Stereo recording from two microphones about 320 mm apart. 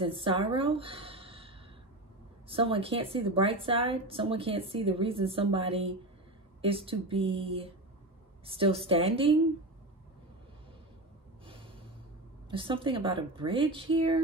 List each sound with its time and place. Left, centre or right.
0.0 s a woman's voice: centre
12.4 s a woman's voice: centre